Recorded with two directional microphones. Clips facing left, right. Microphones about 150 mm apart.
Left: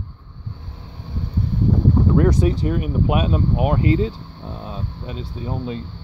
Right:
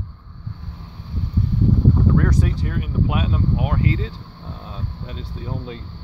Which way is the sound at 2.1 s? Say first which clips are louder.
Left 4 dB; 25° left (ahead or behind).